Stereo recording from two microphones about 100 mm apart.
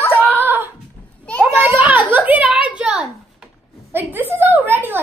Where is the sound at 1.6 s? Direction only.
15° right (ahead or behind).